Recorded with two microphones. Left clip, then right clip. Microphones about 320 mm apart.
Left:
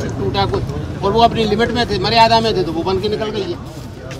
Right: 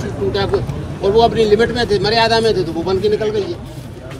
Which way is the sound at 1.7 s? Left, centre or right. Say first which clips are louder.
Right 1 dB; centre.